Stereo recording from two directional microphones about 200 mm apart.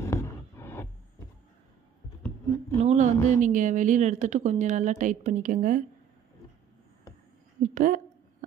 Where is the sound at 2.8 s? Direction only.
35° right (ahead or behind).